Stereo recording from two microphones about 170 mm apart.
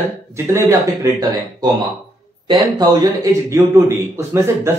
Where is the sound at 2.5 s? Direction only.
20° right (ahead or behind).